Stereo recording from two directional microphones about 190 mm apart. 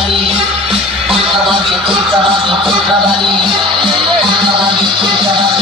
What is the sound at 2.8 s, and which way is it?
Music, centre (ahead or behind).